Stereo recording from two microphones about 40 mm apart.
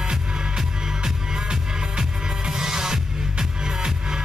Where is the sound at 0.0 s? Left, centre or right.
Centre.